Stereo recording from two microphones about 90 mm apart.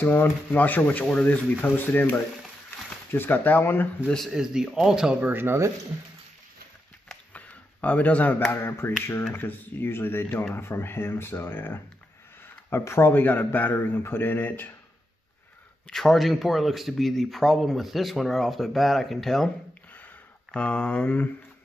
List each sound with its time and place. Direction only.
0.0 s speech: 20° left (ahead or behind)
4.3 s speech: 5° right (ahead or behind)
5.2 s speech: 25° right (ahead or behind)
7.3 s a sound: 15° left (ahead or behind)
8.5 s speech: 25° left (ahead or behind)
15.9 s speech: 5° left (ahead or behind)
20.5 s speech: 10° left (ahead or behind)